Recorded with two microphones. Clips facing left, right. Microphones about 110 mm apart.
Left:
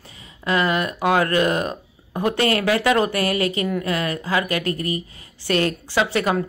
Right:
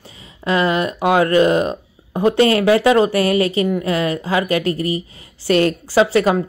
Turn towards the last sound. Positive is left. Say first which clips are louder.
# right 6 dB
turn(degrees=-30)  # may be behind; listen again after turning